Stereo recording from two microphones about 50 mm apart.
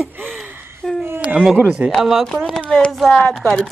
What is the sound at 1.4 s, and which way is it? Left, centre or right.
Speech, centre.